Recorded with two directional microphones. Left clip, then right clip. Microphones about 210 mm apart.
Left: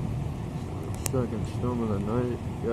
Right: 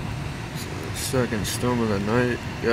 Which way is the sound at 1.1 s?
25° right (ahead or behind).